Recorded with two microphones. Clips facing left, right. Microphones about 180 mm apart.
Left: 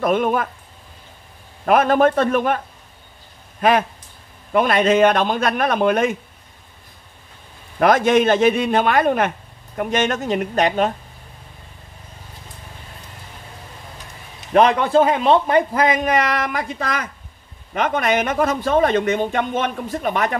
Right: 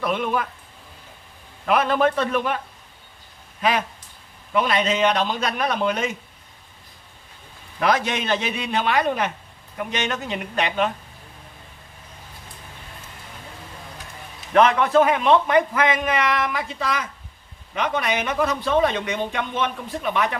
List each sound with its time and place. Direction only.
0.0 s a man's voice: 50° left (ahead or behind)
1.7 s a man's voice: 45° left (ahead or behind)
3.6 s a man's voice: 50° left (ahead or behind)
7.8 s a man's voice: 50° left (ahead or behind)
14.5 s a man's voice: 35° left (ahead or behind)